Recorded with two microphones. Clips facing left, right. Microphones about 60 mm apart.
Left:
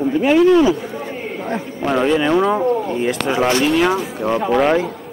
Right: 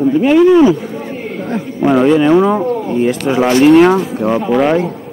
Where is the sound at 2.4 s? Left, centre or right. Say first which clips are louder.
Right 3 dB; centre.